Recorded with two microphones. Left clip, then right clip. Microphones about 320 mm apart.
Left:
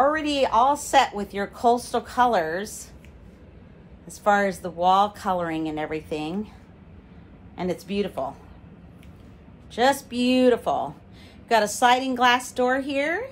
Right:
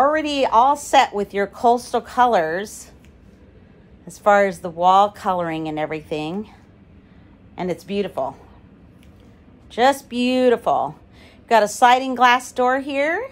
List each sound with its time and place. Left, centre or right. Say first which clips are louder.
0.0 s a woman's voice: right 3 dB; right
4.1 s a woman's voice: right 6 dB; right
7.5 s a woman's voice: right 3 dB; right
9.7 s a woman's voice: right 4 dB; right